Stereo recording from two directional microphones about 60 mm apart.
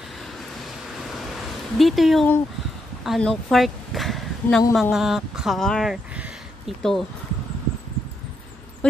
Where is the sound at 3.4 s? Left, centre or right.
Centre.